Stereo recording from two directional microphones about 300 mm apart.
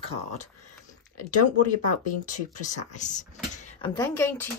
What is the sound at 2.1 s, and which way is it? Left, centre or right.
Speech, left.